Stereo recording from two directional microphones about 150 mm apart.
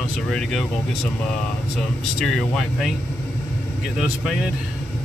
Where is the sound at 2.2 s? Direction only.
Centre (ahead or behind).